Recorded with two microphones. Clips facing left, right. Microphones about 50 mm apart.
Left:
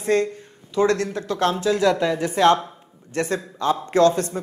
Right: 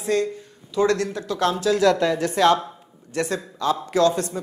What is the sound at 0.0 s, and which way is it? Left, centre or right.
Speech, left.